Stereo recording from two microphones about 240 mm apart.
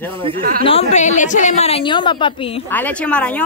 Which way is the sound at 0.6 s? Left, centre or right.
Left.